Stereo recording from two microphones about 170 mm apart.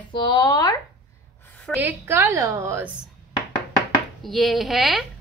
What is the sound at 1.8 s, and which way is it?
A woman's voice, 15° right (ahead or behind).